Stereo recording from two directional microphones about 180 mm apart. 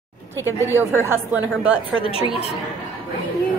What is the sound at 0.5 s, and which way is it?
Speech, 15° left (ahead or behind).